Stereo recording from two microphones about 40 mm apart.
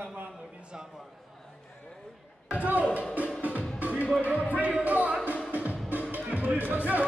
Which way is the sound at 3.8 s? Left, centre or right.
Right.